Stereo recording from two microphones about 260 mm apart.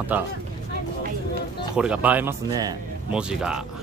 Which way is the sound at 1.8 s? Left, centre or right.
Centre.